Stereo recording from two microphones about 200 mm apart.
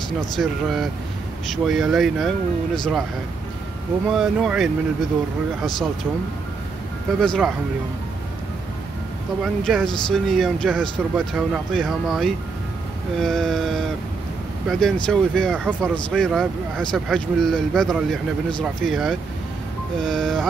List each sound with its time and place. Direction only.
0.4 s speech: centre (ahead or behind)
4.1 s speech: centre (ahead or behind)
7.2 s speech: centre (ahead or behind)
9.4 s speech: centre (ahead or behind)